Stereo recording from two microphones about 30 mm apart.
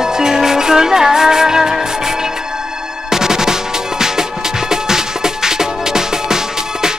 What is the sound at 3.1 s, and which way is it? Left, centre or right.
Music, centre.